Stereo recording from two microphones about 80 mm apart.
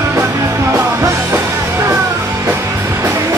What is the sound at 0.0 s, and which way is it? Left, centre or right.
Music, right.